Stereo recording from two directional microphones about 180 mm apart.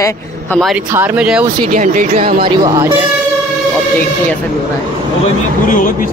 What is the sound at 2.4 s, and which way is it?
Speech, 25° right (ahead or behind).